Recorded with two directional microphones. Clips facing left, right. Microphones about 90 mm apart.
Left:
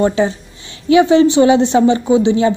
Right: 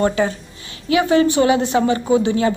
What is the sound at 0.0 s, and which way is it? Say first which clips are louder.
A woman's voice: left 3 dB; 20° left (ahead or behind).